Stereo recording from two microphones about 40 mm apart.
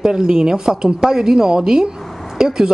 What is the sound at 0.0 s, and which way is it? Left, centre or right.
Speech, centre.